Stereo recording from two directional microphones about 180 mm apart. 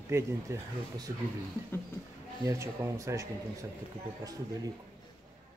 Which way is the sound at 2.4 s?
15° right (ahead or behind).